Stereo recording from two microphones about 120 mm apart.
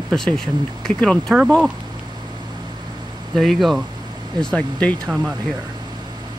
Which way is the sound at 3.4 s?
Centre (ahead or behind).